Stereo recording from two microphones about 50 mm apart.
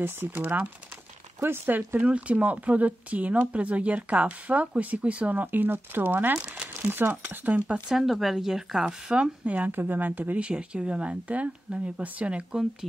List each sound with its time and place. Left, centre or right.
0.3 s speech: right
1.7 s speech: right
2.0 s speech: right
6.4 s crumpling: right
6.7 s speech: right
7.9 s speech: centre
9.1 s speech: right
9.7 s speech: right